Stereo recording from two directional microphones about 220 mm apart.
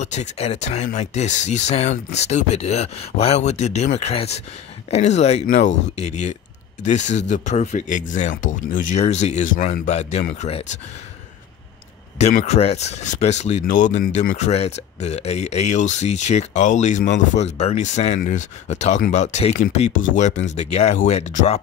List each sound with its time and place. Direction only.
0.0 s speech: 30° left (ahead or behind)
12.2 s speech: 30° left (ahead or behind)